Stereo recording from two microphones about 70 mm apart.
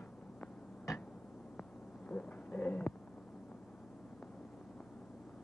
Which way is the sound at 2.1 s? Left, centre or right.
Centre.